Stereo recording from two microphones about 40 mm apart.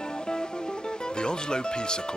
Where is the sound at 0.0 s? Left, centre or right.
Left.